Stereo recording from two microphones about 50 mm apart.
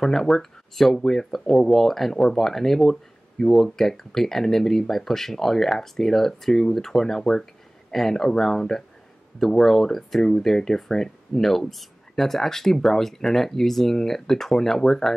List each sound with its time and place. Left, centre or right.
0.0 s speech: centre